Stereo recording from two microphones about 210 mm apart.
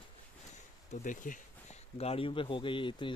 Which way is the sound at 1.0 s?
40° left (ahead or behind).